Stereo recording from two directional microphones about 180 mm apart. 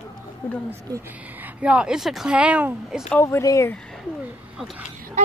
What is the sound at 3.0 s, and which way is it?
Speech, 10° left (ahead or behind).